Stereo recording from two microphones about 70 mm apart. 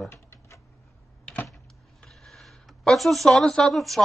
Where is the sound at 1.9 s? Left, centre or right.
Centre.